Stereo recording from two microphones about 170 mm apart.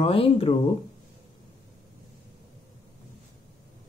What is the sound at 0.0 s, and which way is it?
Speech, 30° left (ahead or behind).